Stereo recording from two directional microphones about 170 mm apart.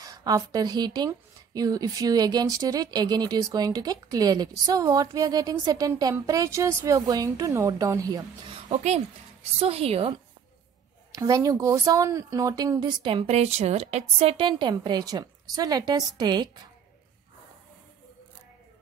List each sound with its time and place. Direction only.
0.0 s speech: 20° right (ahead or behind)
8.6 s a woman's voice: 40° right (ahead or behind)
11.1 s speech: 20° right (ahead or behind)